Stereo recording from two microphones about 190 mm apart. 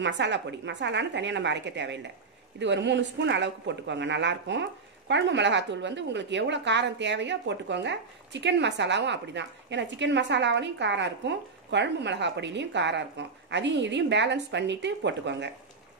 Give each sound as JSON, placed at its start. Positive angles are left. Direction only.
{"t": 0.0, "sound": "speech", "side_deg": -70}